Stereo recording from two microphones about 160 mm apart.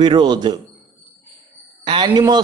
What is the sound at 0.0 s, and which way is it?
Speech, 25° right (ahead or behind).